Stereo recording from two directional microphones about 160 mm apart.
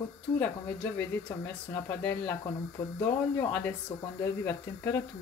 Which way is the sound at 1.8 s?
10° left (ahead or behind).